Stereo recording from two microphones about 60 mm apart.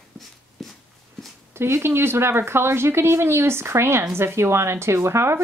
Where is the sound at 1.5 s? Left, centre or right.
Right.